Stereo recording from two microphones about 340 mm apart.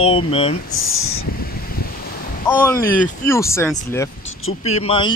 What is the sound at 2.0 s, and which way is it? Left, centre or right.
Waves, left.